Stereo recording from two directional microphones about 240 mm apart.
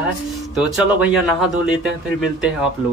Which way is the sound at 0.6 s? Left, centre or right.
Centre.